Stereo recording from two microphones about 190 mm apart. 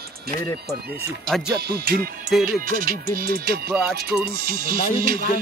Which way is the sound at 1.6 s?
55° right (ahead or behind).